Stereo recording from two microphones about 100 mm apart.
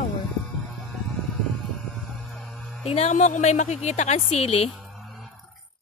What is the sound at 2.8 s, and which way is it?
Speech, 90° left.